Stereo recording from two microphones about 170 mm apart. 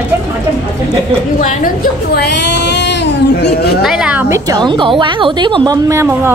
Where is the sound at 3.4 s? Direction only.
65° left (ahead or behind).